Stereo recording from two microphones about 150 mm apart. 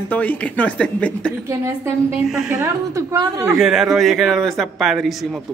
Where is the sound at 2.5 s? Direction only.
20° right (ahead or behind).